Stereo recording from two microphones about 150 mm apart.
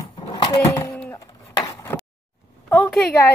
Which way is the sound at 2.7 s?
5° left (ahead or behind).